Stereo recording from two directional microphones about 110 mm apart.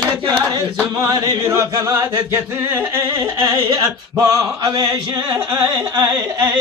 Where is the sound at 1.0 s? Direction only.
35° right (ahead or behind).